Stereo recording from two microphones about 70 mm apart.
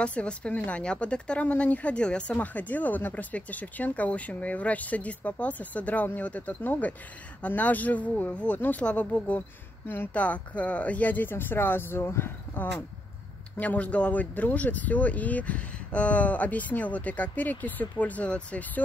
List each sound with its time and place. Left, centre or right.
0.0 s speech: centre; by 12.8 s left
13.6 s speech: left